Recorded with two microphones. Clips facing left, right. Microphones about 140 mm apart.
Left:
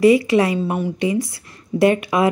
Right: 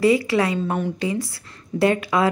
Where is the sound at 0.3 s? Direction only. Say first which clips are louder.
Left 4 dB; 20° left (ahead or behind).